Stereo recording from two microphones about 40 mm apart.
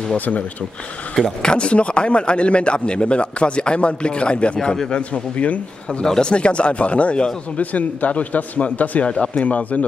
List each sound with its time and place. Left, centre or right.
0.2 s speech: left
1.1 s a man's voice: centre
6.0 s speech: centre
6.3 s speech: left
9.0 s speech: left